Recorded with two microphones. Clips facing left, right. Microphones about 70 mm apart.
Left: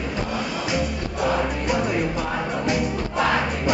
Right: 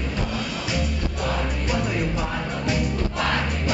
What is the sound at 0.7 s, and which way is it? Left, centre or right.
Music, centre.